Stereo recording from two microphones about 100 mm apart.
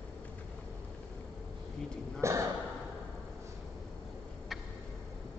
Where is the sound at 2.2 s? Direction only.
30° right (ahead or behind).